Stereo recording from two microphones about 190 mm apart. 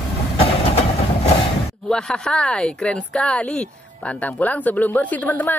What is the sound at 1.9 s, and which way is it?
Speech, 5° left (ahead or behind).